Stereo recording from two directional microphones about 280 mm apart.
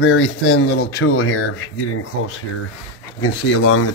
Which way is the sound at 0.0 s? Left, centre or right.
Left.